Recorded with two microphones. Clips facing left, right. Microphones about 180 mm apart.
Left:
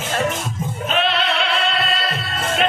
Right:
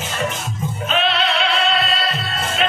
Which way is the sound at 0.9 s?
55° left (ahead or behind).